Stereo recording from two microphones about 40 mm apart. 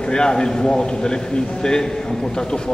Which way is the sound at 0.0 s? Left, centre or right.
Centre.